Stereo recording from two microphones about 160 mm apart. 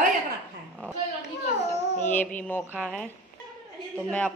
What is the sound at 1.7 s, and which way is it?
Baby cry, 50° left (ahead or behind).